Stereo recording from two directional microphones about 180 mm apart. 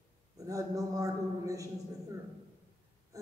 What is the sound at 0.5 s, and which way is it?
A woman's voice, 20° right (ahead or behind).